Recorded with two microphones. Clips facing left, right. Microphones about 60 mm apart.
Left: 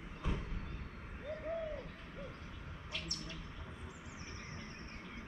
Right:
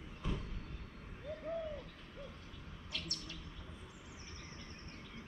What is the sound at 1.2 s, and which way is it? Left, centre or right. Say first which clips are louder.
Bird: left 1 dB; left.